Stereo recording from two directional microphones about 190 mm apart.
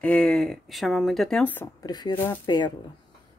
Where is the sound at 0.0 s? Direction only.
5° left (ahead or behind); by 2.7 s 25° left (ahead or behind).